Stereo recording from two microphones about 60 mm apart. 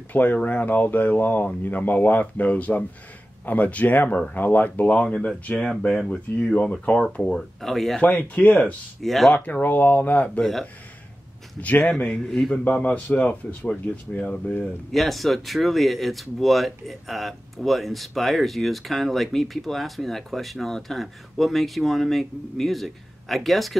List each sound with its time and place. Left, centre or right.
0.1 s speech: left
4.9 s speech: centre
7.3 s speech: centre
8.0 s speech: left
9.0 s speech: centre
9.3 s speech: left
10.4 s speech: centre
11.6 s a man's voice: left
12.2 s speech: centre
12.8 s speech: left
14.9 s speech: centre